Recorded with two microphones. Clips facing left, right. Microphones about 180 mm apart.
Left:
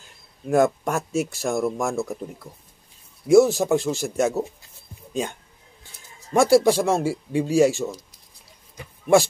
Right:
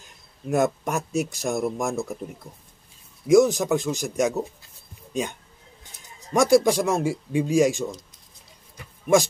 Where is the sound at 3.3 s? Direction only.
15° right (ahead or behind).